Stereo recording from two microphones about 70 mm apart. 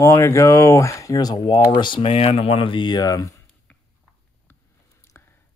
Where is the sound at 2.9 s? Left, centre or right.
Left.